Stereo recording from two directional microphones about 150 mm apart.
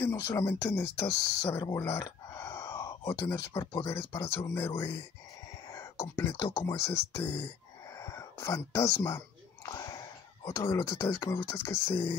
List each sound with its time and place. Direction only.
0.0 s speech: 15° left (ahead or behind)
1.8 s a sound: 20° left (ahead or behind)
3.5 s speech: 30° left (ahead or behind)
3.9 s speech: 20° left (ahead or behind)
6.1 s speech: 20° left (ahead or behind)